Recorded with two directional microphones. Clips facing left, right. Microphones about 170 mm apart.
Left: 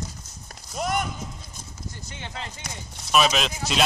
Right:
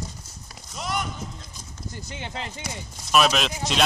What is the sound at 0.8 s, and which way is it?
Speech, 50° left (ahead or behind).